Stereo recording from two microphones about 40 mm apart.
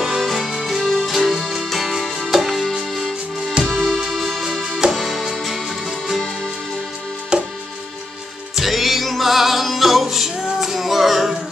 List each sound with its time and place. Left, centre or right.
0.2 s music: centre
7.3 s music: right
8.5 s music: centre